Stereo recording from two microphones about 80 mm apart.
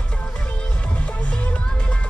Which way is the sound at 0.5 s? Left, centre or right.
Centre.